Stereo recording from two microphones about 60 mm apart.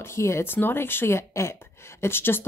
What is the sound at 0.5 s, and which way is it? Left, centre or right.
Speech, left.